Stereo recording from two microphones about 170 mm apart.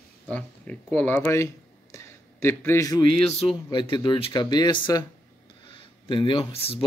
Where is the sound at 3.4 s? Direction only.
30° left (ahead or behind).